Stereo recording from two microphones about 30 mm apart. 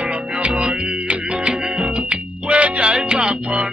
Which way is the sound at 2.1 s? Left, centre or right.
Right.